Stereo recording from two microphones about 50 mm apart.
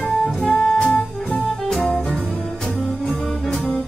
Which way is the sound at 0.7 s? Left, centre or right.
Left.